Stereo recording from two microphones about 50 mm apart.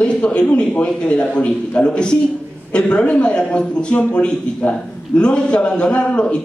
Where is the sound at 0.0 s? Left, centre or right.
Left.